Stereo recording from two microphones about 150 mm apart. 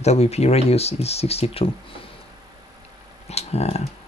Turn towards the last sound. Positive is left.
turn(degrees=45)  # may be behind; listen again after turning